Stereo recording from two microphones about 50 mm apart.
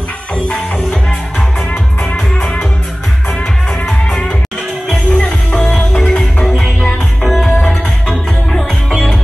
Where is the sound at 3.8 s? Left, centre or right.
Centre.